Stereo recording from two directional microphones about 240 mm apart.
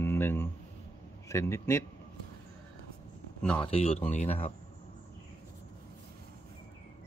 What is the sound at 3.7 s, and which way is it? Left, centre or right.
Speech, left.